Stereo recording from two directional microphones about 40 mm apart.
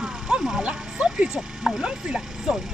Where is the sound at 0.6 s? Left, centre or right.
Right.